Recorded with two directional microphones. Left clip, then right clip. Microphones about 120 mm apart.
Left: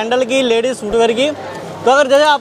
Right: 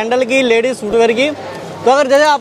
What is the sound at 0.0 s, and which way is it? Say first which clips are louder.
A man's voice: right 1 dB; 45° right (ahead or behind).